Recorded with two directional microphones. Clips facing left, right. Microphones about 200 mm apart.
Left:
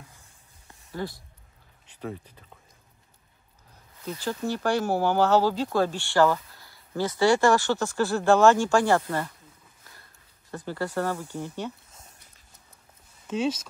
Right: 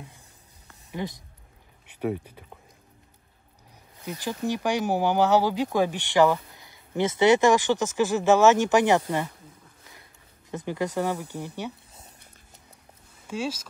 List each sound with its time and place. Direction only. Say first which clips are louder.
0.9 s speech: right 1 dB; 20° right (ahead or behind)
4.0 s speech: even; 15° right (ahead or behind)
10.5 s speech: right 2 dB; 20° right (ahead or behind)
13.3 s speech: left 4 dB; 10° right (ahead or behind)